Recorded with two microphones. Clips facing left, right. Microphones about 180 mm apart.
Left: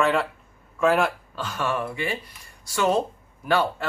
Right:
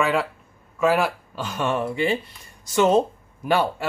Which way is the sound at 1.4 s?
15° right (ahead or behind).